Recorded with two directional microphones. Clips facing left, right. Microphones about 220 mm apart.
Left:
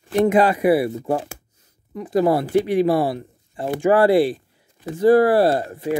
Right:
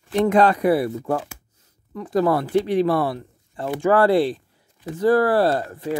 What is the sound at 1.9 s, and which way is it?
Speech, 15° left (ahead or behind).